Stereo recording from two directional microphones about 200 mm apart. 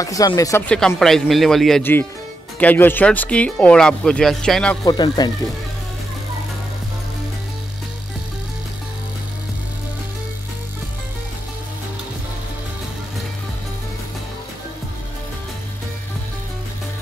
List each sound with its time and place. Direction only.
0.0 s speech: 15° left (ahead or behind)
0.7 s speech: 5° left (ahead or behind)
4.8 s speech: 20° left (ahead or behind)